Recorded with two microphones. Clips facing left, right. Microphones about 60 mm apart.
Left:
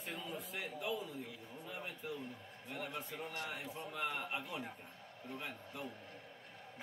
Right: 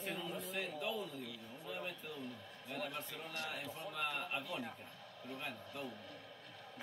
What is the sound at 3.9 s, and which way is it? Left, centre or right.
Speech, centre.